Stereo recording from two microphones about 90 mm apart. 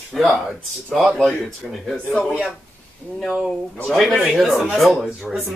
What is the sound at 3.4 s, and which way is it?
Speech, centre (ahead or behind).